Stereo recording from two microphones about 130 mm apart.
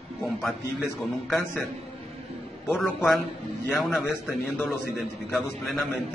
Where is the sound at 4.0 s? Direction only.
15° left (ahead or behind).